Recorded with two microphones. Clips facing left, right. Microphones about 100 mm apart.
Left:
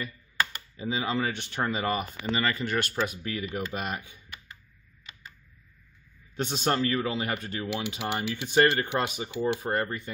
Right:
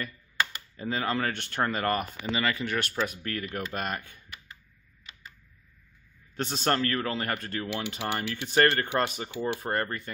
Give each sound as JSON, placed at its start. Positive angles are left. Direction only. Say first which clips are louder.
{"t": 0.7, "sound": "speech", "louder": "even", "side_deg": 5}
{"t": 6.3, "sound": "speech", "louder": "even", "side_deg": 5}